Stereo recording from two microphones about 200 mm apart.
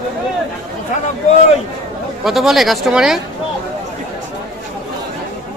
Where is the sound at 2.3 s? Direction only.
Centre (ahead or behind).